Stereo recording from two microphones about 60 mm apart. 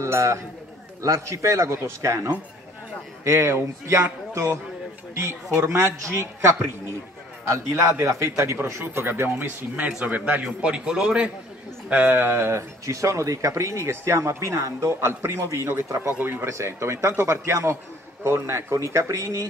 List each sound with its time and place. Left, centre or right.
0.0 s a man's voice: right
3.3 s a man's voice: right
5.6 s a man's voice: right
8.8 s speech: right
9.8 s a man's voice: right
11.9 s speech: right
13.8 s a man's voice: right
16.5 s speech: right